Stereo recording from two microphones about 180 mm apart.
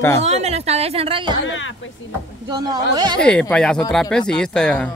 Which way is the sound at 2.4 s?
20° right (ahead or behind).